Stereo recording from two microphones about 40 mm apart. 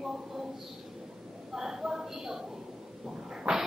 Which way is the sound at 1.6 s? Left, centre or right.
Centre.